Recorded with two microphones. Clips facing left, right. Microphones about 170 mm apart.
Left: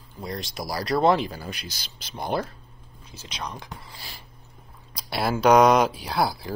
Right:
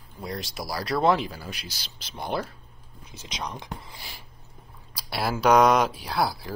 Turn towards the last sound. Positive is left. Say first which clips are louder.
# left 1 dB
turn(degrees=0)  # may be behind; listen again after turning